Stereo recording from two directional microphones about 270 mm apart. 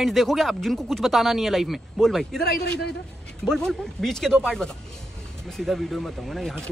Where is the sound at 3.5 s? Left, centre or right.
Centre.